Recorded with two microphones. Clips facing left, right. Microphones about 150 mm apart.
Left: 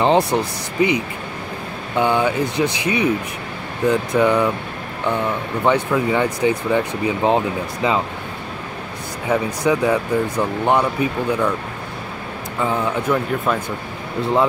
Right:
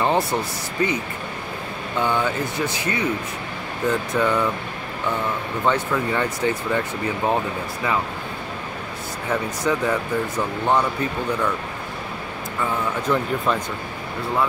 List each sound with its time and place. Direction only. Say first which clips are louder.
0.0 s speech: left 5 dB; 15° left (ahead or behind)
5.6 s speech: left 4 dB; 15° left (ahead or behind)
9.3 s speech: left 5 dB; 10° left (ahead or behind)
13.1 s speech: left 1 dB; 5° left (ahead or behind)